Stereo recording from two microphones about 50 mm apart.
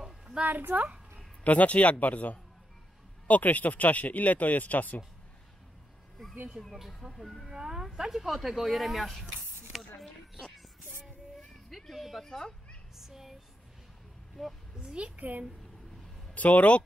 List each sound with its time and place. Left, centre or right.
0.4 s speech: right
1.4 s speech: left
6.6 s speech: centre
7.5 s speech: centre
9.7 s a sound: centre
11.7 s speech: centre
12.9 s a sound: centre
14.4 s a woman's voice: centre
14.8 s a child's voice: centre
16.3 s speech: left